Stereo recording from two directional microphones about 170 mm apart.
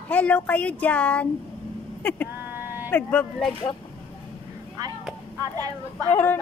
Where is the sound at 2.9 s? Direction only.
10° left (ahead or behind).